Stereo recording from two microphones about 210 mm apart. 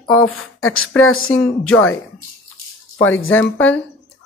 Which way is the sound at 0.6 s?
90° left.